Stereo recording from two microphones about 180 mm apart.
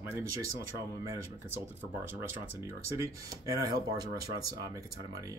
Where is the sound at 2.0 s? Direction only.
15° right (ahead or behind).